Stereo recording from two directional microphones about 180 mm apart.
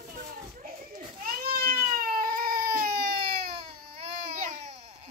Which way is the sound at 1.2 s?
55° right (ahead or behind).